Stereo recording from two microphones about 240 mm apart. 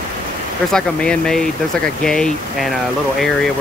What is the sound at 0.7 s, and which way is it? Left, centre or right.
Speech, centre.